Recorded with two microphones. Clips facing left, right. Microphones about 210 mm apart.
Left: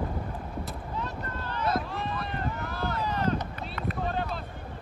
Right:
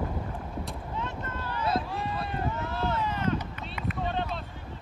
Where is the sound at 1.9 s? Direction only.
10° right (ahead or behind).